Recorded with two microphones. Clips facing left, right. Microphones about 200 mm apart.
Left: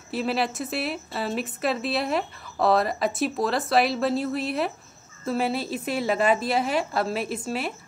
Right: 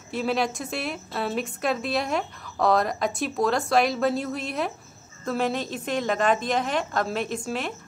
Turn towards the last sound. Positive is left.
turn(degrees=5)  # may be behind; listen again after turning